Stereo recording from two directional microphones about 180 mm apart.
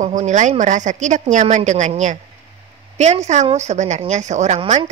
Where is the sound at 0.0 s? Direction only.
40° right (ahead or behind).